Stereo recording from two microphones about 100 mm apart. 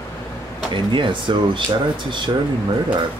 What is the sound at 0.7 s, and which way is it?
Speech, 55° right (ahead or behind).